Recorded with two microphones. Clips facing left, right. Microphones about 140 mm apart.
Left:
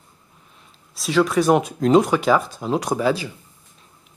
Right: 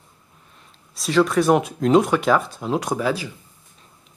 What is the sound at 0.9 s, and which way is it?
Speech, centre (ahead or behind).